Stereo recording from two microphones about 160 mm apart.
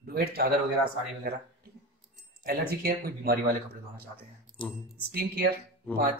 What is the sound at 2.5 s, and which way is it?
Speech, 70° right (ahead or behind).